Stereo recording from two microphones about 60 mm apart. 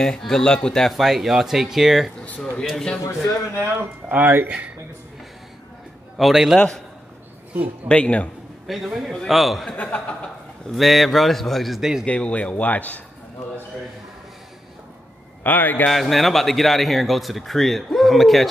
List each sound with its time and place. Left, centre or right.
0.0 s speech: centre
2.2 s speech: left
2.7 s speech: centre
3.6 s speech: right
4.5 s speech: right
6.1 s speech: centre
7.5 s speech: right
7.9 s speech: left
8.6 s speech: centre
9.8 s speech: left
10.7 s speech: centre
12.1 s speech: left
15.4 s a man's voice: left
15.9 s speech: centre